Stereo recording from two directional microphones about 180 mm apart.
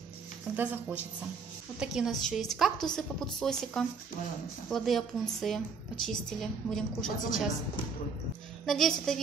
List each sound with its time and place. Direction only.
0.6 s a woman's voice: 10° right (ahead or behind)
8.6 s a woman's voice: centre (ahead or behind)